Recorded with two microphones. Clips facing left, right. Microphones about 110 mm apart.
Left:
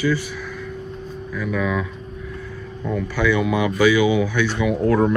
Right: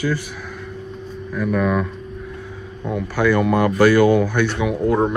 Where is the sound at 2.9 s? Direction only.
Centre (ahead or behind).